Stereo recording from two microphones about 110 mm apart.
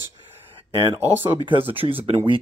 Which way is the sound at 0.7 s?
50° right (ahead or behind).